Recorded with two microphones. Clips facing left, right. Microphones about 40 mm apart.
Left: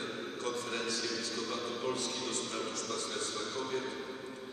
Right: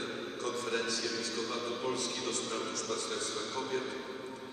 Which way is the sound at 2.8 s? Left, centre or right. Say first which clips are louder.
Right 1 dB; right.